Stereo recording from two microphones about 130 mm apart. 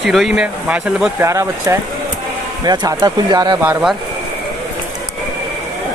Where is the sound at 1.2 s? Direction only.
20° right (ahead or behind).